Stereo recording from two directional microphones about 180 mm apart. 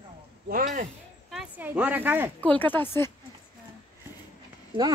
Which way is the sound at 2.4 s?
10° left (ahead or behind).